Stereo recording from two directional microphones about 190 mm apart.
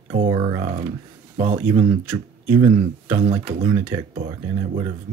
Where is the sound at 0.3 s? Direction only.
25° right (ahead or behind).